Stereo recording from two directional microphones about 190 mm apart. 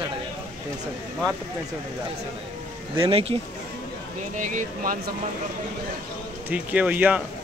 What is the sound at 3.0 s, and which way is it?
Speech, 30° right (ahead or behind).